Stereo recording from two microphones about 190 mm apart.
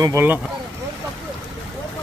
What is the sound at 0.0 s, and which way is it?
Speech, 10° right (ahead or behind).